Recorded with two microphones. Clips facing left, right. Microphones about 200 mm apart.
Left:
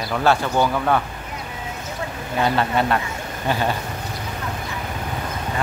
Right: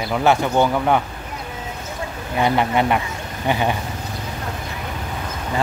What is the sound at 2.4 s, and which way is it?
Speech, 15° right (ahead or behind).